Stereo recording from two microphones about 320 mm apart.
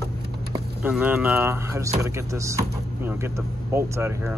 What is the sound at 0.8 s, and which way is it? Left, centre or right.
Speech, centre.